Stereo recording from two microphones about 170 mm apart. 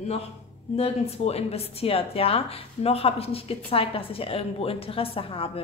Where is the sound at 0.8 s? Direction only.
35° left (ahead or behind).